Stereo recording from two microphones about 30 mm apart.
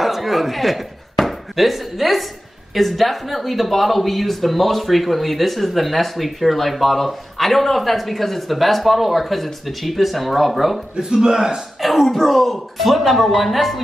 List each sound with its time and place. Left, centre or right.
0.0 s a sound: centre
2.7 s speech: centre
11.2 s a man's voice: centre
11.8 s speech: centre